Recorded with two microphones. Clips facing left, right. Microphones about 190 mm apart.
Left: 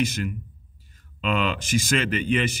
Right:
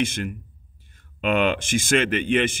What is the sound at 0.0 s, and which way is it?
Speech, 50° right (ahead or behind).